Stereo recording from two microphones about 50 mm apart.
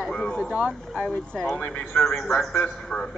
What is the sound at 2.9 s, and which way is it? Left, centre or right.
Speech, centre.